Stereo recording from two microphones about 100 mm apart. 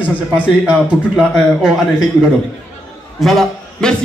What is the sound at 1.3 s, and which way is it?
Speech, 5° left (ahead or behind).